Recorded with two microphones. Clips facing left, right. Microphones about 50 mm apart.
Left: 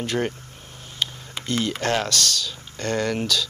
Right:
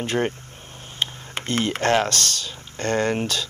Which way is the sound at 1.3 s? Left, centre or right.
Right.